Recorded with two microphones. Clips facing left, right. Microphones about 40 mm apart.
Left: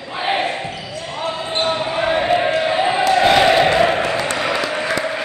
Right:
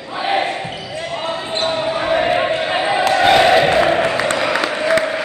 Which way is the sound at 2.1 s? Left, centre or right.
Right.